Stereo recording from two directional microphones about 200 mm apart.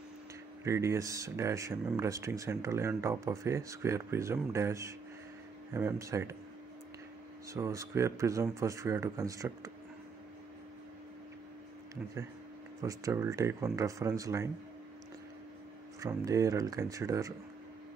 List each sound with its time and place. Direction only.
0.7 s speech: 15° right (ahead or behind)
7.5 s speech: 15° right (ahead or behind)
12.8 s speech: 15° right (ahead or behind)
16.0 s speech: 15° right (ahead or behind)